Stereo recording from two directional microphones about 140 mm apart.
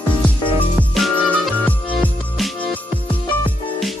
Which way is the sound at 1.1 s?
10° left (ahead or behind).